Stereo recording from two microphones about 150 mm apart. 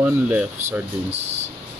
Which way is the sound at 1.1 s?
45° right (ahead or behind).